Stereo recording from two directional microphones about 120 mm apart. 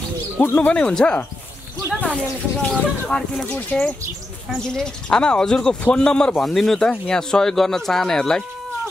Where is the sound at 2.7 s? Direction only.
5° left (ahead or behind).